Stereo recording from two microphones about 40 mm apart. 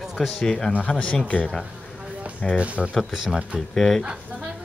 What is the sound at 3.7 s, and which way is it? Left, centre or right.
Speech, centre.